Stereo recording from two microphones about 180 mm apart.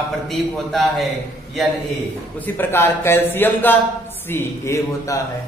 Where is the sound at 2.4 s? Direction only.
10° left (ahead or behind).